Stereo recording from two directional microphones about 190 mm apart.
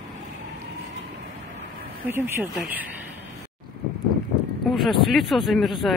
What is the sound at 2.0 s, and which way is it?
Speech, 10° right (ahead or behind).